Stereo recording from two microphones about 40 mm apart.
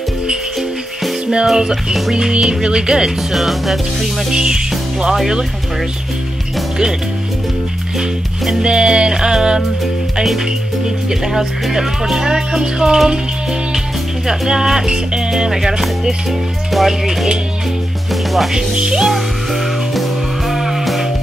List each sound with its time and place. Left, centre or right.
1.3 s speech: centre
3.3 s speech: centre
4.3 s speech: centre
5.1 s speech: centre
8.6 s music: right
11.7 s speech: centre
14.2 s speech: centre
18.1 s music: centre
18.5 s music: centre
19.9 s music: centre